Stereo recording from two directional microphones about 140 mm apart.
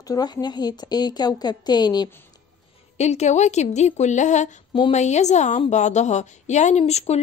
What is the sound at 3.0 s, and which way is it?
A woman's voice, 55° left (ahead or behind).